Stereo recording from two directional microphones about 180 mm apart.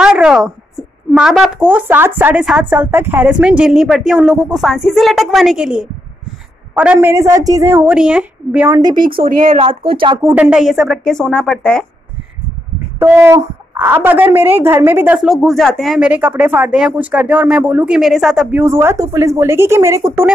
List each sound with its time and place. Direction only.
0.0 s a sound: 5° right (ahead or behind)
1.7 s a woman's voice: 10° right (ahead or behind)
9.3 s speech: 50° right (ahead or behind)
9.6 s speech: 30° right (ahead or behind)
10.1 s a woman's voice: 10° right (ahead or behind); by 11.8 s 5° left (ahead or behind)
13.0 s a woman's voice: 15° right (ahead or behind)